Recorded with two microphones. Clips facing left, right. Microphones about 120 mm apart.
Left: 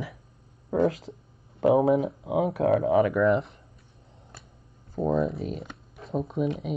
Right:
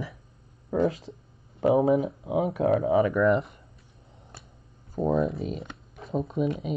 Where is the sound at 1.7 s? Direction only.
25° left (ahead or behind).